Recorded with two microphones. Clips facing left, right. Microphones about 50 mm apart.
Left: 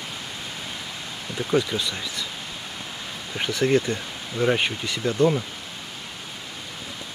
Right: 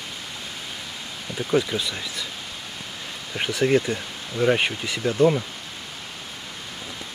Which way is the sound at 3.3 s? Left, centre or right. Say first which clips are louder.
Right 1 dB; centre.